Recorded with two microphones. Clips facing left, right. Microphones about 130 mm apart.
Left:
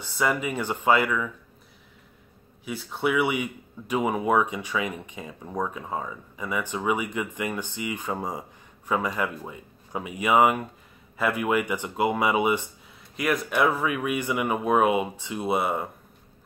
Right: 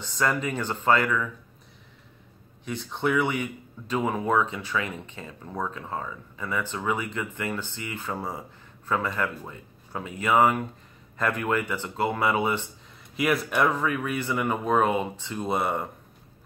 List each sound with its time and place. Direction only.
0.0 s speech: 10° left (ahead or behind)
2.6 s speech: 5° left (ahead or behind)
13.1 s speech: centre (ahead or behind)